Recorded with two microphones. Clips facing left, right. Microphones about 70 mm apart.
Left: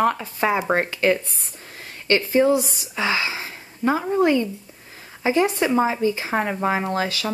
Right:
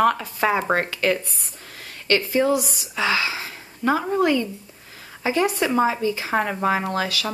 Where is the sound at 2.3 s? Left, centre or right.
Left.